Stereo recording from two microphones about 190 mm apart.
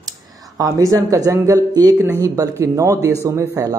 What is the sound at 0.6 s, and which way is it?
A man's voice, 15° right (ahead or behind).